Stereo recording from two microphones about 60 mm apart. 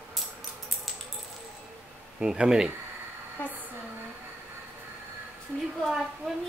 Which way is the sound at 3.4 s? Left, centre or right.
Left.